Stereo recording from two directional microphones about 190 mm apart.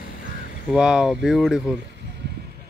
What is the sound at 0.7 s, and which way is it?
Speech, 5° right (ahead or behind).